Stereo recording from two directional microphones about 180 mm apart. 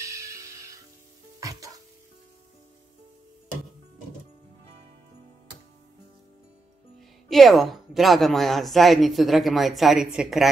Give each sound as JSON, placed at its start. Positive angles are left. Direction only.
{"t": 0.0, "sound": "music", "side_deg": -15}
{"t": 7.2, "sound": "a woman's voice", "side_deg": 0}